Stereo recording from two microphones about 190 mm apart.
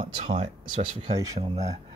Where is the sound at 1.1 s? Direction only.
20° right (ahead or behind).